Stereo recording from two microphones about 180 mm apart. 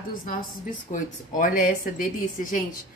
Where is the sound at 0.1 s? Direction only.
50° left (ahead or behind).